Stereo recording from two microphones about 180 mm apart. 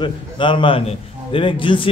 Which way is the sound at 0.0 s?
25° left (ahead or behind).